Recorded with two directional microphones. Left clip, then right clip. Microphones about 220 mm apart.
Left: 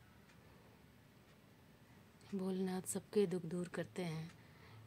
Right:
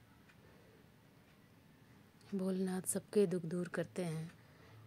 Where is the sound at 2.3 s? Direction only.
15° right (ahead or behind).